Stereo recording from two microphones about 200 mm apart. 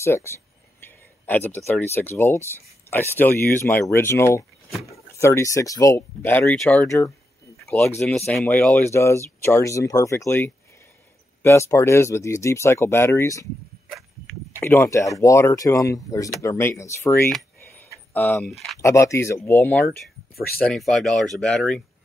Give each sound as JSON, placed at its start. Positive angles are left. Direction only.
{"t": 0.0, "sound": "speech", "side_deg": 15}
{"t": 8.3, "sound": "speech", "side_deg": 5}
{"t": 14.6, "sound": "speech", "side_deg": 10}